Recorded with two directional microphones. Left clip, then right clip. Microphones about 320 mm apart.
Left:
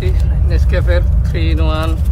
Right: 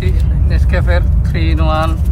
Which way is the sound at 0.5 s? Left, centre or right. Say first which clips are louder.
Even; centre.